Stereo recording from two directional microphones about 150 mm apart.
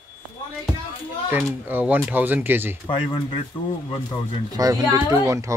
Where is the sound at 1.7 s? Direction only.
10° right (ahead or behind).